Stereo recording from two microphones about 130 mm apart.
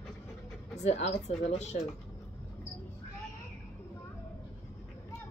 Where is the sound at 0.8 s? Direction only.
60° left (ahead or behind).